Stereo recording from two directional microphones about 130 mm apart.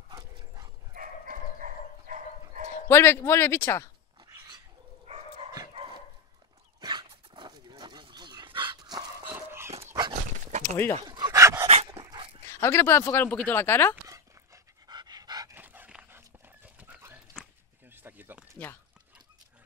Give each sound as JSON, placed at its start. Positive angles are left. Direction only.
{"t": 0.1, "sound": "dog", "side_deg": -30}
{"t": 0.9, "sound": "dog", "side_deg": -85}
{"t": 2.9, "sound": "speech", "side_deg": 20}
{"t": 5.8, "sound": "dog", "side_deg": -40}
{"t": 9.2, "sound": "dog", "side_deg": -15}
{"t": 10.6, "sound": "speech", "side_deg": 20}
{"t": 11.1, "sound": "dog", "side_deg": -25}
{"t": 11.6, "sound": "dog", "side_deg": -50}
{"t": 11.9, "sound": "dog", "side_deg": -25}
{"t": 12.5, "sound": "speech", "side_deg": 20}
{"t": 14.0, "sound": "pant", "side_deg": -25}
{"t": 15.5, "sound": "dog", "side_deg": -15}
{"t": 17.8, "sound": "a sound", "side_deg": -15}